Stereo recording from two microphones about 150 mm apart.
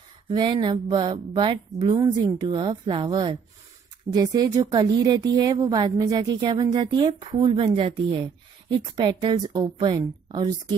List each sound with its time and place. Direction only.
0.3 s a woman's voice: 30° right (ahead or behind)